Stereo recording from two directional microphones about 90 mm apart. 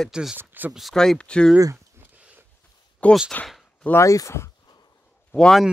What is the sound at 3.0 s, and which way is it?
Speech, 15° left (ahead or behind).